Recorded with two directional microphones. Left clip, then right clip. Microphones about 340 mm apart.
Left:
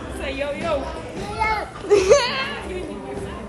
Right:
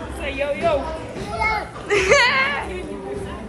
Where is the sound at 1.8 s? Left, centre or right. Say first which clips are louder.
Even; centre.